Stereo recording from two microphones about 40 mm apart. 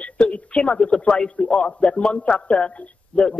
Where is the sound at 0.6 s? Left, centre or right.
Left.